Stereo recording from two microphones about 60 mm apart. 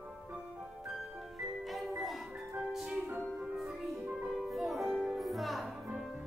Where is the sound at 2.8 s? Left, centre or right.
Centre.